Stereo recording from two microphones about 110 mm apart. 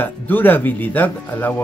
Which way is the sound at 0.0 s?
15° left (ahead or behind).